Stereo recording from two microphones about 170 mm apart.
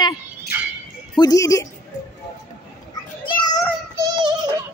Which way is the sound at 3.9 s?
20° right (ahead or behind).